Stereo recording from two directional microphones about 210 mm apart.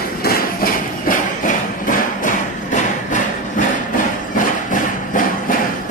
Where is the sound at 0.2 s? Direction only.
40° left (ahead or behind).